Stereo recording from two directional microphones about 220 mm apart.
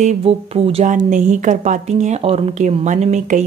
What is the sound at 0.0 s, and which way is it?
A woman's voice, 30° right (ahead or behind).